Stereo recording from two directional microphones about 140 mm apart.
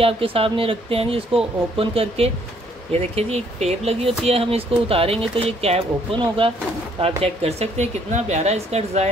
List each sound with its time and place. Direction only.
0.0 s speech: 40° right (ahead or behind)